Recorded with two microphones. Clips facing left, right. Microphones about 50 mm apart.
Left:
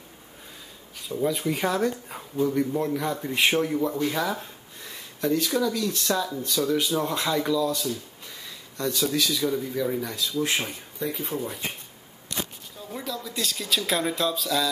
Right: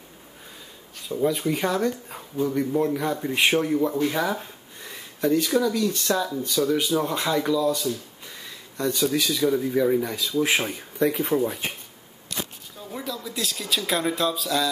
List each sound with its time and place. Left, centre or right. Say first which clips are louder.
1.0 s speech: right 2 dB; centre
11.0 s speech: right 8 dB; right
12.9 s speech: right 1 dB; centre